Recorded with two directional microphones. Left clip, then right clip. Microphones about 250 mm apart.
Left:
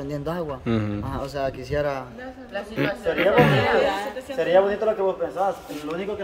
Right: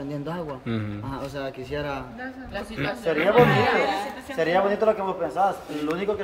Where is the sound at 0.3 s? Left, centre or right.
Centre.